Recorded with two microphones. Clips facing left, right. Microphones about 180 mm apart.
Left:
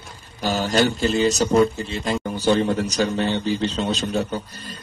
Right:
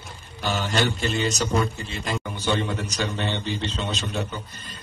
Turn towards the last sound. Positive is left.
turn(degrees=35)  # may be behind; listen again after turning